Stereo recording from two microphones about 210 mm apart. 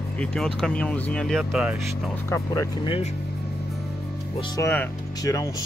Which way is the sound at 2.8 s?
25° left (ahead or behind).